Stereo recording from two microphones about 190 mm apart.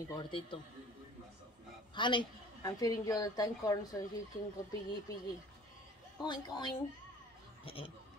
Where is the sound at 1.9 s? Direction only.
25° left (ahead or behind).